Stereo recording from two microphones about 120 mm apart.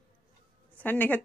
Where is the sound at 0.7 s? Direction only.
15° left (ahead or behind).